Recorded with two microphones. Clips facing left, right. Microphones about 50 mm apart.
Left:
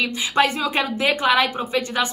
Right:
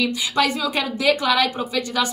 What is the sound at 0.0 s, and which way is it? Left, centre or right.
A woman's voice, left.